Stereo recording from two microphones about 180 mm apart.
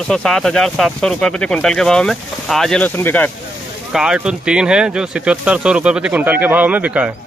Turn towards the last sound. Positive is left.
turn(degrees=-10)  # may be behind; listen again after turning